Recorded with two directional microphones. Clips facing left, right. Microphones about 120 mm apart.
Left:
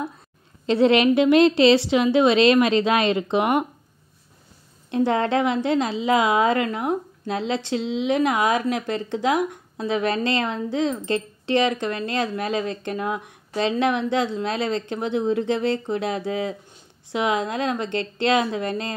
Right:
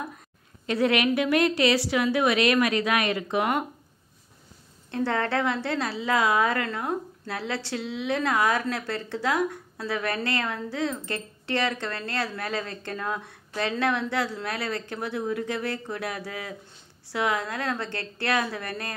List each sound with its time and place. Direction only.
0.7 s a woman's voice: 25° left (ahead or behind)
4.9 s a woman's voice: 15° left (ahead or behind)